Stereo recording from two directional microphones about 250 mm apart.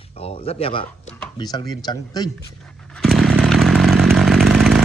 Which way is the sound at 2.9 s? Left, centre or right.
Centre.